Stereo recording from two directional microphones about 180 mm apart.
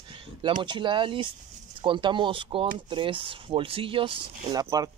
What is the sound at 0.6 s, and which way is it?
Speech, 25° right (ahead or behind).